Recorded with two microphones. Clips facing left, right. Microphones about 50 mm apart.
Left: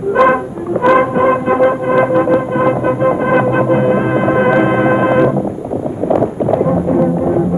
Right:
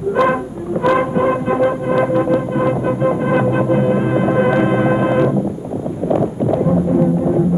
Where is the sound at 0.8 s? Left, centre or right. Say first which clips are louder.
Left 4 dB; left.